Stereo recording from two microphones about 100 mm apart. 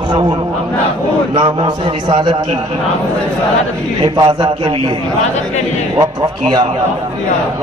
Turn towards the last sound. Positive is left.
turn(degrees=-40)  # may be behind; listen again after turning